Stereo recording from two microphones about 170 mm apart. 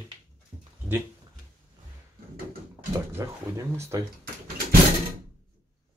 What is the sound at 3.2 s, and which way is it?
Speech, 15° right (ahead or behind).